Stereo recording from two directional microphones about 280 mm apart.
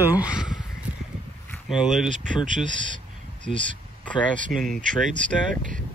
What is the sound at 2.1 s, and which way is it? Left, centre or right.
Speech, right.